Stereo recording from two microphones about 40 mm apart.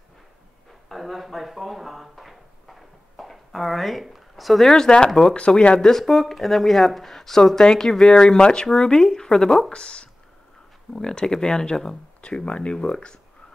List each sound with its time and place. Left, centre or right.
0.8 s drawer open or close: centre
4.6 s speech: centre
5.9 s speech: centre
12.2 s speech: left